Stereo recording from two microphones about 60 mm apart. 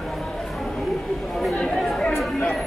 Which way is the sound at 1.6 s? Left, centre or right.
Centre.